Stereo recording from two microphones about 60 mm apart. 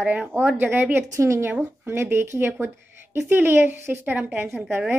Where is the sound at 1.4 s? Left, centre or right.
Right.